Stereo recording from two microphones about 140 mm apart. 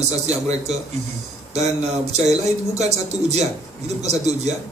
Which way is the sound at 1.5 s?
50° right (ahead or behind).